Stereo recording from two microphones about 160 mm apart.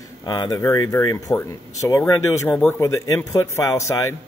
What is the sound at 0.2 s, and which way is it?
A man's voice, 25° left (ahead or behind).